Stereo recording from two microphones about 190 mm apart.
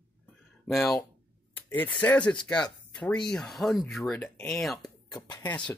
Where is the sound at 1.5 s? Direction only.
10° left (ahead or behind).